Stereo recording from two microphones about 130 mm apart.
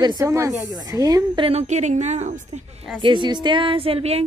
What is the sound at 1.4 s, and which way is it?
A woman's voice, 50° right (ahead or behind).